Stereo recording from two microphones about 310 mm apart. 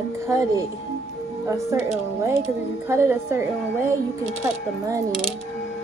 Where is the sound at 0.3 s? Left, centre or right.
Centre.